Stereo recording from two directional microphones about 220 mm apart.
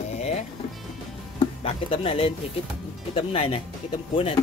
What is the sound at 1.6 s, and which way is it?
Speech, 25° left (ahead or behind).